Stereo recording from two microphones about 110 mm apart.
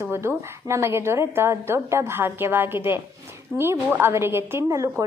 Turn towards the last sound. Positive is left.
turn(degrees=-30)  # may be behind; listen again after turning